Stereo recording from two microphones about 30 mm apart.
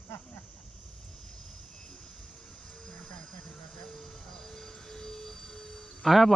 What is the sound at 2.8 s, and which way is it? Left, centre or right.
Train, centre.